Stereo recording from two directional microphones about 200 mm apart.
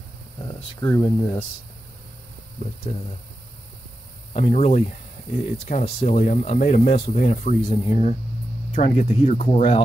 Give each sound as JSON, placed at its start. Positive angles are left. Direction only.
{"t": 0.4, "sound": "speech", "side_deg": 20}
{"t": 4.3, "sound": "speech", "side_deg": 30}